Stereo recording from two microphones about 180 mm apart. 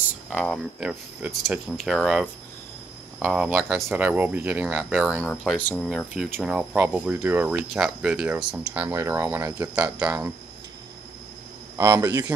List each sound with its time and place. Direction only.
0.3 s speech: 5° left (ahead or behind)
5.9 s speech: centre (ahead or behind)
11.7 s a man's voice: 15° right (ahead or behind)